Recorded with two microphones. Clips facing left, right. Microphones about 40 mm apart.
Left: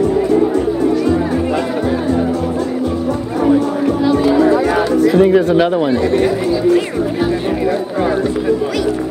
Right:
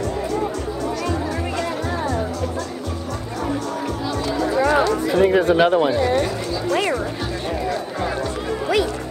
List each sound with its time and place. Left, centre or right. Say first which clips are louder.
4.1 s music: left 10 dB; left
4.7 s speech: left 6 dB; centre
6.0 s speech: left 7 dB; centre